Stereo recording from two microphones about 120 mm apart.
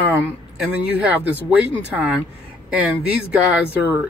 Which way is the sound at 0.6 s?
15° right (ahead or behind).